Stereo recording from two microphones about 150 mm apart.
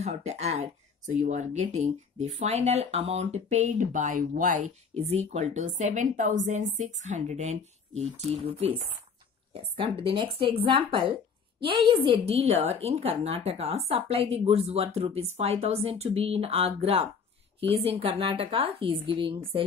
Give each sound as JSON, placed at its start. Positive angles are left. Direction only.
{"t": 0.0, "sound": "a woman's voice", "side_deg": -45}